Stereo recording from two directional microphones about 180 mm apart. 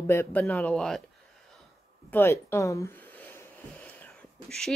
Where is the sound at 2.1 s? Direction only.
15° left (ahead or behind).